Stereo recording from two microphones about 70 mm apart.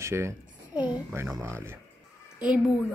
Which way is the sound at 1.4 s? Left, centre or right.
Right.